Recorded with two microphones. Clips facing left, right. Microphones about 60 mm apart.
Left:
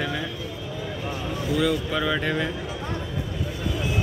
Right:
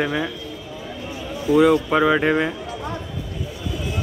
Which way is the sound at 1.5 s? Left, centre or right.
Right.